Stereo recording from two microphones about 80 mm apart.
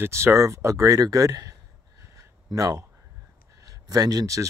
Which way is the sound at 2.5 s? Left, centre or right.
Right.